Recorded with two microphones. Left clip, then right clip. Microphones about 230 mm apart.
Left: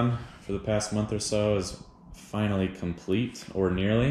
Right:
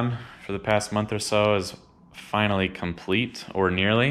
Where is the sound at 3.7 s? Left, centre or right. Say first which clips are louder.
Right 7 dB; right.